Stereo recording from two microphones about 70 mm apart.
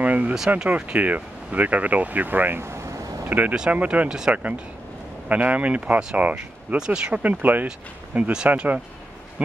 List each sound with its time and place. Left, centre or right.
0.0 s a sound: right
0.6 s speech: centre
7.2 s speech: right